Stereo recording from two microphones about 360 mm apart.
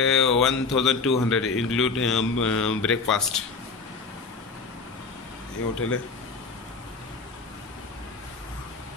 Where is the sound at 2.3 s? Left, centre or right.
Left.